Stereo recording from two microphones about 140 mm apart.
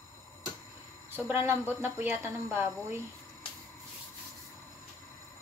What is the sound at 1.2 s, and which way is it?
Speech, 15° right (ahead or behind).